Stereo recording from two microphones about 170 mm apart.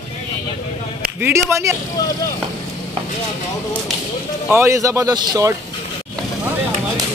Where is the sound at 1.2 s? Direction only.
15° right (ahead or behind).